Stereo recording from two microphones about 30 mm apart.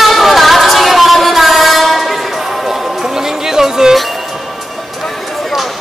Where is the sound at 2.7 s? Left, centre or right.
Centre.